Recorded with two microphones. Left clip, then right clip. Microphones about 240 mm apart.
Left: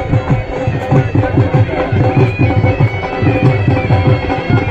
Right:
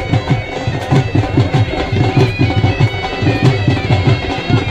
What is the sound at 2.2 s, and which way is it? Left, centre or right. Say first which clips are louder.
Music: left 1 dB; centre.